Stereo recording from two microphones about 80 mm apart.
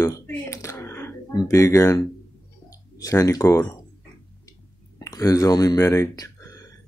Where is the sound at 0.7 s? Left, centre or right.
Left.